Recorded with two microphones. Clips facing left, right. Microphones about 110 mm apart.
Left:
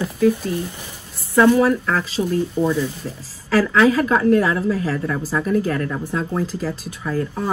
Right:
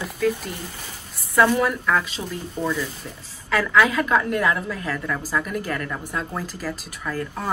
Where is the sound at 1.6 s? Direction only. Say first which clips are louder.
Left 3 dB; 35° left (ahead or behind).